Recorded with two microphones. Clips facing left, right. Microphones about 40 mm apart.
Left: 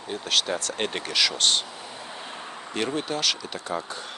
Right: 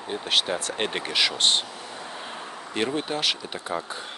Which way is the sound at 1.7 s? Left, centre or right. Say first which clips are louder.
Right 1 dB; centre.